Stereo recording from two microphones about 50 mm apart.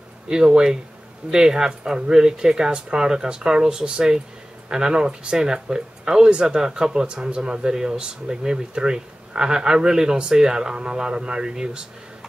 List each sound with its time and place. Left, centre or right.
0.3 s speech: centre